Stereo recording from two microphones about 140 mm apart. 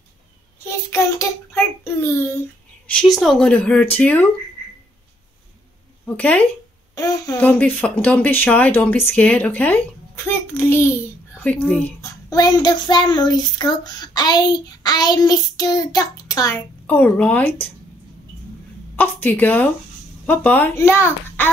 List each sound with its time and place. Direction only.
0.7 s child singing: 20° left (ahead or behind)
2.9 s speech: 5° left (ahead or behind)
6.0 s speech: 10° left (ahead or behind)
7.0 s child singing: 25° left (ahead or behind)
7.3 s speech: 10° left (ahead or behind)
12.0 s child singing: 25° left (ahead or behind)
16.8 s speech: 10° left (ahead or behind)
18.9 s speech: 10° left (ahead or behind)